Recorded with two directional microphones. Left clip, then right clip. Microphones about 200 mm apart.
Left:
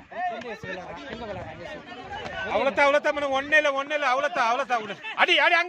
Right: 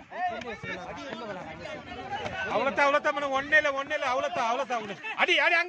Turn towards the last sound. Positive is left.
turn(degrees=30)  # may be behind; listen again after turning